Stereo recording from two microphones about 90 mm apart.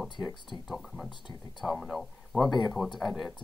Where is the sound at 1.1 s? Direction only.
55° left (ahead or behind).